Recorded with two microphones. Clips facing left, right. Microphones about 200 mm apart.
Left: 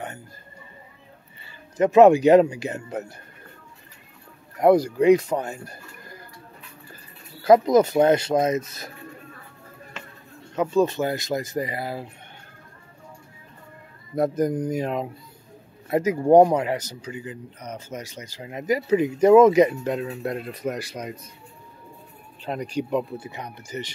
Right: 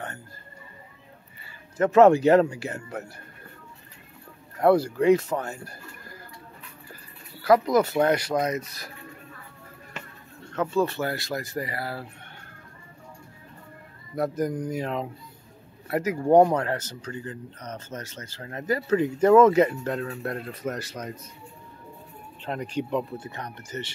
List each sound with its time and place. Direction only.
1.8 s speech: 15° left (ahead or behind)
4.6 s speech: 15° left (ahead or behind)
7.4 s speech: 20° left (ahead or behind)
10.5 s speech: 15° left (ahead or behind)
14.1 s speech: 20° left (ahead or behind)
22.4 s speech: 10° left (ahead or behind)